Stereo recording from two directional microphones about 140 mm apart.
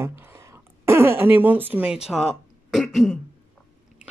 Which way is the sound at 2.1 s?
Centre (ahead or behind).